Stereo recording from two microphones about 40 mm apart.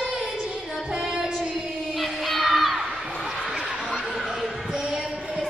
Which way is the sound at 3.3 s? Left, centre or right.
Centre.